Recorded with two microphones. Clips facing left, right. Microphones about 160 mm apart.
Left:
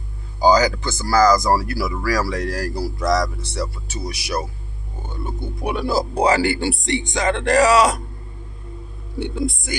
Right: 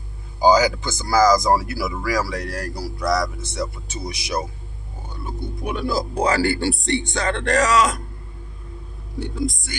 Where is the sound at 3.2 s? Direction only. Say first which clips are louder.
Even; 20° right (ahead or behind).